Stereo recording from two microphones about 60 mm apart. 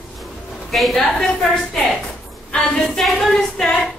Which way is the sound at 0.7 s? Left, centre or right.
Centre.